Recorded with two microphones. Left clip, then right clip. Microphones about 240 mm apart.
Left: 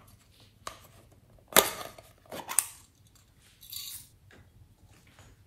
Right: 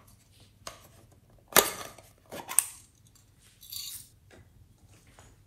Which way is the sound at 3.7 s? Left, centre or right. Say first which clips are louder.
Right 1 dB; centre.